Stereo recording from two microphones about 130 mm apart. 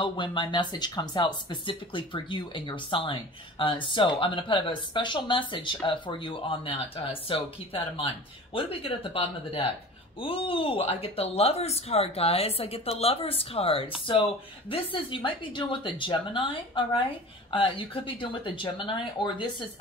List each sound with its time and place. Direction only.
0.0 s speech: 40° left (ahead or behind)